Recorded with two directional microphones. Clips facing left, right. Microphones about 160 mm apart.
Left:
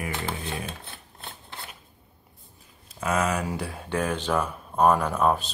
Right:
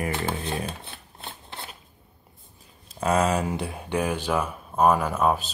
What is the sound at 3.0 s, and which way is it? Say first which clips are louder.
Speech: right 3 dB; 30° right (ahead or behind).